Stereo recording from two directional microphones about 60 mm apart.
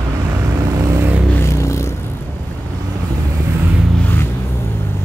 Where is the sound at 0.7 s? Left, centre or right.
Right.